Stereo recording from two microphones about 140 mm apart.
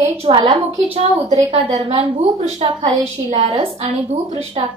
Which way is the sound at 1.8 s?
45° right (ahead or behind).